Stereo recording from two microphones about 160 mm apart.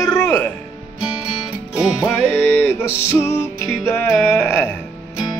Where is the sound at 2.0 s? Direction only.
10° left (ahead or behind).